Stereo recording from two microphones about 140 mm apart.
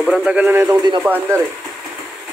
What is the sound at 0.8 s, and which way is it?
Speech, 25° right (ahead or behind).